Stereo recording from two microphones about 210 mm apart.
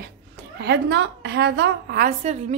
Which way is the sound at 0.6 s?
55° right (ahead or behind).